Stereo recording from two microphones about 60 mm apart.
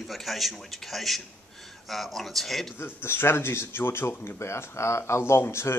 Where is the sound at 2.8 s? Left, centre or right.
Left.